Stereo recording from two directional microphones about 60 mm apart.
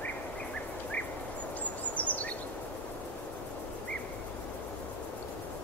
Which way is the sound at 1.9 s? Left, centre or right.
Left.